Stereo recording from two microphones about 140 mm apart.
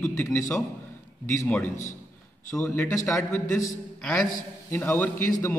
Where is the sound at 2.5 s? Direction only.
15° left (ahead or behind).